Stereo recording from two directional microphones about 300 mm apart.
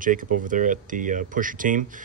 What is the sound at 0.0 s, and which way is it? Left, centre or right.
Speech, right.